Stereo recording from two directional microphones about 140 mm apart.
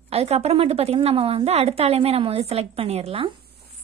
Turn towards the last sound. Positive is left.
turn(degrees=-45)  # may be behind; listen again after turning